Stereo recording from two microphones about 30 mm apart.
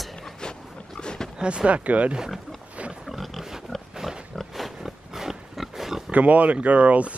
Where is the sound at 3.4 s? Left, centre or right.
Centre.